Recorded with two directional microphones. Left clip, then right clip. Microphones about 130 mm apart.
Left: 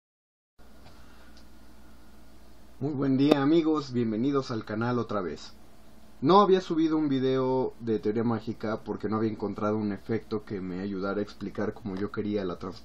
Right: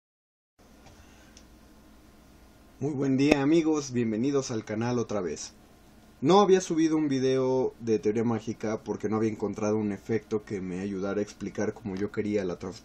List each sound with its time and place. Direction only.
2.8 s speech: 10° right (ahead or behind)